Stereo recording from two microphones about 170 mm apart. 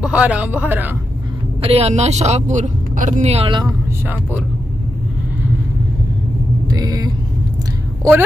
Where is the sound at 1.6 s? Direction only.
35° right (ahead or behind).